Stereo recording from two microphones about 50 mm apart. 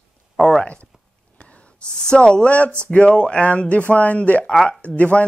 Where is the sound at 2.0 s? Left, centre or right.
Centre.